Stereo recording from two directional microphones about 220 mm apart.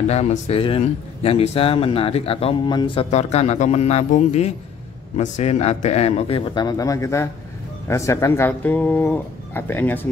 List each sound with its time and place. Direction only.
0.1 s speech: 30° left (ahead or behind); by 10.0 s 10° left (ahead or behind)